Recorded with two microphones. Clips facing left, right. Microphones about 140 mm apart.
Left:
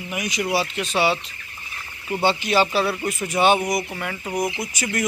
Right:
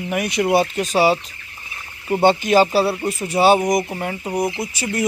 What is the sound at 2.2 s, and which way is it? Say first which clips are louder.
Speech: right 5 dB; 50° right (ahead or behind).